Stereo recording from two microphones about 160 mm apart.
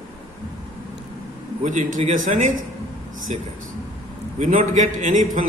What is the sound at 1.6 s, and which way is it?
Speech, 50° right (ahead or behind).